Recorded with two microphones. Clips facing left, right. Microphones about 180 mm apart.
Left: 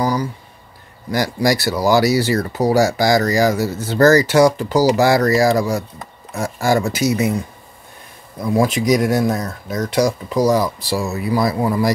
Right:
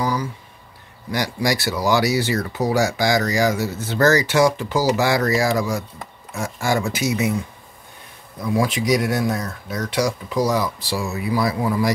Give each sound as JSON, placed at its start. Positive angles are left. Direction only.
{"t": 0.0, "sound": "a sound", "side_deg": 35}
{"t": 1.1, "sound": "speech", "side_deg": 40}
{"t": 8.5, "sound": "speech", "side_deg": 40}